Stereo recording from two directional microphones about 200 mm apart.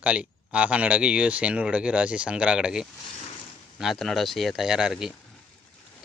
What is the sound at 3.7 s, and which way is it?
Speech, centre (ahead or behind).